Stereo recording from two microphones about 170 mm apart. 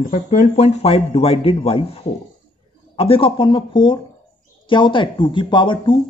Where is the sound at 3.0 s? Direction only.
35° left (ahead or behind).